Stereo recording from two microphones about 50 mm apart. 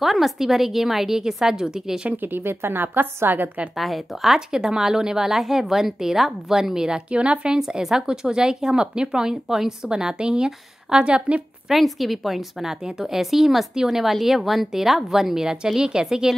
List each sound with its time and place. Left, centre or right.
0.0 s speech: centre
2.2 s a woman's voice: right
3.7 s speech: centre; by 11.4 s right
11.7 s a woman's voice: centre